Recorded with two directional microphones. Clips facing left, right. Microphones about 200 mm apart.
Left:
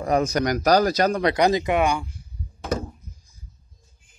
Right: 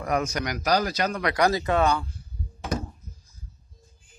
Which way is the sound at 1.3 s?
20° left (ahead or behind).